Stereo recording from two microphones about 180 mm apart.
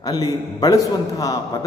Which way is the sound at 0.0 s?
20° left (ahead or behind).